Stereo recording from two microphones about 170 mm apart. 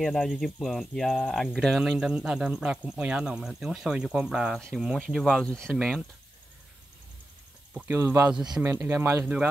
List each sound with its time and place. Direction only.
0.0 s speech: centre (ahead or behind)
7.7 s speech: 10° right (ahead or behind)